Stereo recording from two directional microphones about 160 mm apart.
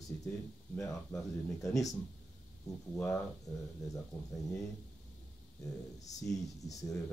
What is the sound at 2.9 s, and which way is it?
Speech, 15° left (ahead or behind).